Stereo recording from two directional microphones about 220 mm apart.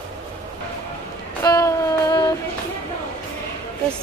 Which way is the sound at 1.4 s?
15° left (ahead or behind).